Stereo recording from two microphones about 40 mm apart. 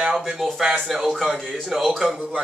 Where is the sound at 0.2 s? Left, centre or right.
Centre.